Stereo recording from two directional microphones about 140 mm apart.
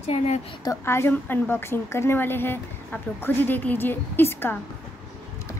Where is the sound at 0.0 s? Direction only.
55° left (ahead or behind).